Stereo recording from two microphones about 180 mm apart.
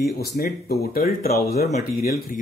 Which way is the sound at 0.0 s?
60° left (ahead or behind).